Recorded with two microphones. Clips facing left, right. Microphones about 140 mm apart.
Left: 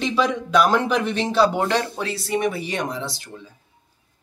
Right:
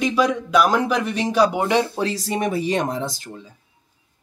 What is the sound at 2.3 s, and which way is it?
Speech, 40° right (ahead or behind).